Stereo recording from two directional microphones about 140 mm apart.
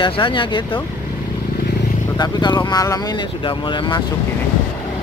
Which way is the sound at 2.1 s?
30° left (ahead or behind).